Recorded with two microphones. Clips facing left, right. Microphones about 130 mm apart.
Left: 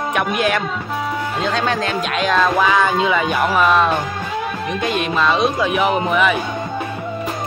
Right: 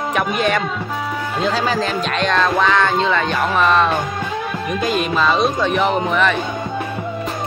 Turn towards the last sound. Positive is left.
turn(degrees=5)  # may be behind; listen again after turning